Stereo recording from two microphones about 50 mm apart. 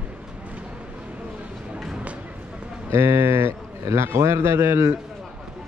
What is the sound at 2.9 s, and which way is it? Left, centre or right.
A man's voice, right.